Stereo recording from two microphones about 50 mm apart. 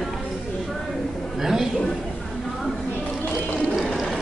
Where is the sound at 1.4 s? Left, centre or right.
Centre.